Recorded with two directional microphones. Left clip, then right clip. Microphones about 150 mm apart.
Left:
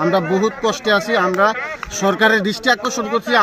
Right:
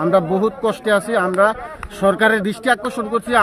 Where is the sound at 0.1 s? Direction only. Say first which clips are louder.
Right 1 dB; 40° right (ahead or behind).